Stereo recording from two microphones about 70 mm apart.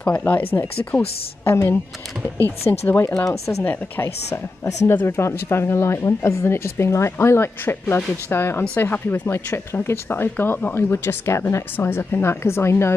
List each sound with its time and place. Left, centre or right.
0.0 s speech: left
2.6 s speech: left
3.6 s speech: left
4.8 s speech: left